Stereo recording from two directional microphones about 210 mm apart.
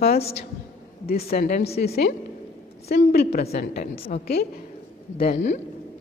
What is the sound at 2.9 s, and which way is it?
Speech, 45° left (ahead or behind).